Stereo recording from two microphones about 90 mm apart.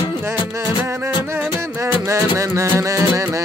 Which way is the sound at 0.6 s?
35° right (ahead or behind).